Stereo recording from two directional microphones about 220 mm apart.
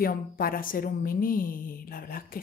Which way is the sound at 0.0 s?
40° left (ahead or behind).